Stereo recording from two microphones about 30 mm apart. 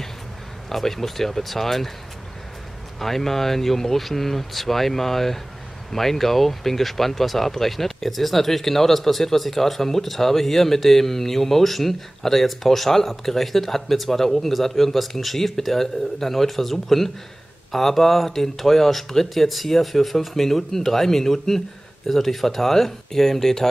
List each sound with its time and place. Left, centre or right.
0.7 s speech: centre
3.0 s speech: centre